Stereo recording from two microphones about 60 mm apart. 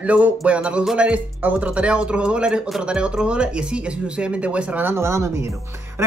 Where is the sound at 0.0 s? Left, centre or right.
Right.